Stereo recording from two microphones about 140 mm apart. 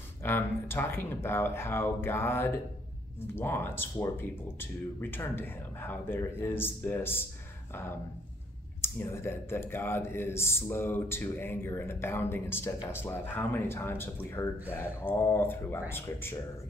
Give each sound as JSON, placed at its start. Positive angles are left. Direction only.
{"t": 0.2, "sound": "speech", "side_deg": 15}
{"t": 8.8, "sound": "speech", "side_deg": 15}